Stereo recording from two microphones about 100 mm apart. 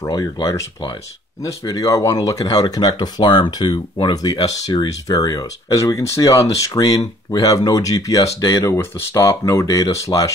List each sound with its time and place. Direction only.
0.0 s speech: 35° left (ahead or behind)
1.6 s speech: 35° left (ahead or behind)